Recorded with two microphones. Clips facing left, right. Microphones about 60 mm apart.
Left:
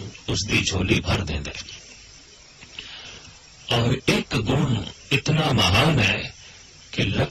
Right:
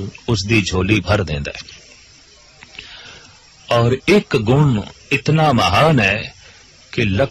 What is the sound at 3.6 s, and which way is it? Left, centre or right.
A man's voice, right.